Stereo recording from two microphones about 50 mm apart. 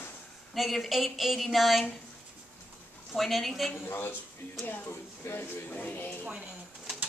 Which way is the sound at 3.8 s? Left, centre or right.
Left.